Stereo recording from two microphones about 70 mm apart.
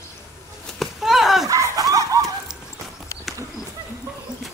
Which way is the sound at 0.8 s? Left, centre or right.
Centre.